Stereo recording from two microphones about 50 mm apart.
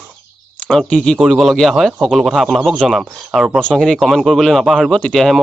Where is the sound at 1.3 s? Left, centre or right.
Centre.